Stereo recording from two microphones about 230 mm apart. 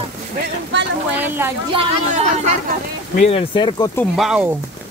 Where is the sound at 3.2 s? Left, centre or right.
Left.